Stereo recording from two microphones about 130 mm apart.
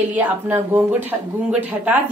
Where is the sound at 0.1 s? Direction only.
15° right (ahead or behind).